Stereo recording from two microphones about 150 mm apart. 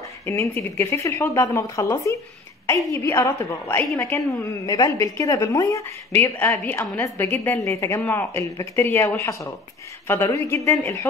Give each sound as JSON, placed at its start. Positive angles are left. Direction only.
{"t": 0.3, "sound": "a woman's voice", "side_deg": 15}